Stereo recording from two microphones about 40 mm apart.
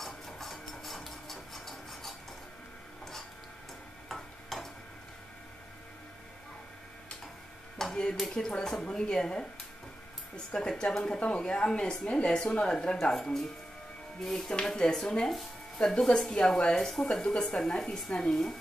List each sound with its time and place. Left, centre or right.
0.0 s printer: centre
4.1 s stir: centre
7.9 s speech: centre
10.5 s speech: centre
11.1 s speech: left; by 14.5 s centre
14.5 s speech: centre
16.1 s speech: centre
16.8 s speech: centre
17.2 s speech: left